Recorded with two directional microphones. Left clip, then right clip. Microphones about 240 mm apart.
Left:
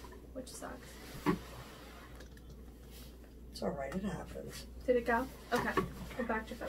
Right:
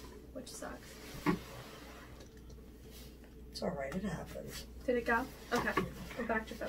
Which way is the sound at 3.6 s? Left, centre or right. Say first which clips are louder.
Even; centre.